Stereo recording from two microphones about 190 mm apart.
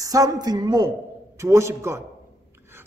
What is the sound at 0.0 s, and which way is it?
A man's voice, 20° right (ahead or behind).